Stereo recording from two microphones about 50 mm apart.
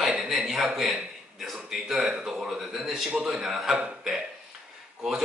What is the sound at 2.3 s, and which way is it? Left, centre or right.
A man's voice, centre.